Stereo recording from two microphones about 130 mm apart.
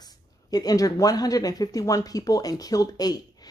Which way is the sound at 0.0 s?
30° left (ahead or behind).